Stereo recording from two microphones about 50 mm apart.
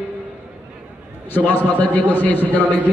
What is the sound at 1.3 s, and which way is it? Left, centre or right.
A man's voice, left.